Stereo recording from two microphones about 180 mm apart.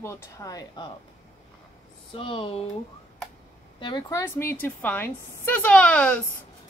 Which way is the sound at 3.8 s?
25° left (ahead or behind).